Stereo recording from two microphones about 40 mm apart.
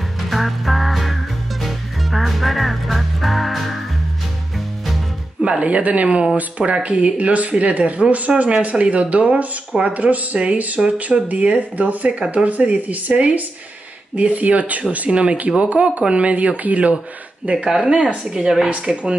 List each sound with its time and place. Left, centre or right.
0.3 s music: centre
5.4 s speech: right
6.0 s speech: centre; by 15.0 s right
15.0 s speech: right
17.6 s speech: centre
18.7 s speech: right